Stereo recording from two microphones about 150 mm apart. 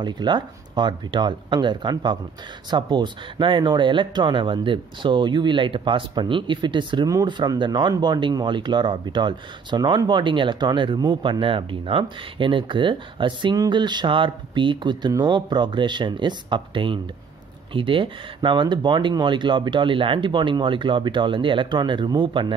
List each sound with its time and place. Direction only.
0.0 s speech: 30° right (ahead or behind)